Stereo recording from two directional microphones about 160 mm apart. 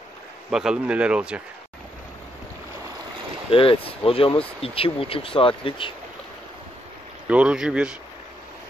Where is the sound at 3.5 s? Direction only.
35° left (ahead or behind).